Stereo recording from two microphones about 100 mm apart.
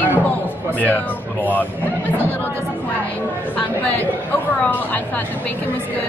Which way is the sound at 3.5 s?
15° left (ahead or behind).